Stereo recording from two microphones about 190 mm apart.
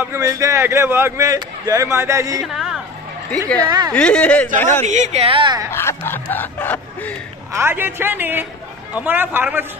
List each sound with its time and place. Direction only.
0.0 s speech: 15° right (ahead or behind)
2.4 s speech: centre (ahead or behind)
3.6 s a woman's voice: 20° right (ahead or behind)
3.9 s speech: 5° left (ahead or behind)
4.8 s a woman's voice: 40° right (ahead or behind)
5.7 s speech: 10° left (ahead or behind)
7.5 s speech: 10° right (ahead or behind)